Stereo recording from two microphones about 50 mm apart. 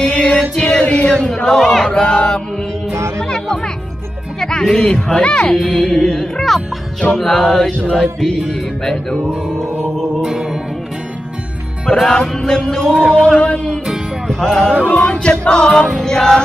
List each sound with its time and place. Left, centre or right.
0.0 s a sound: left; by 1.9 s centre
1.9 s speech: centre
3.2 s music: centre
5.9 s speech: centre
7.2 s music: centre
7.7 s speech: left
8.0 s music: centre
10.2 s music: centre
11.9 s music: centre
13.0 s music: right
13.4 s speech: left
14.2 s music: centre
15.0 s music: centre